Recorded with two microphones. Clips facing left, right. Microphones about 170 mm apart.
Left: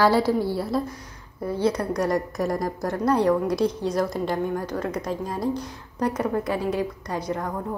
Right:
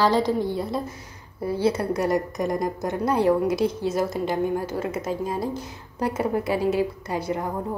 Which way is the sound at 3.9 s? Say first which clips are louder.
Even; 25° right (ahead or behind).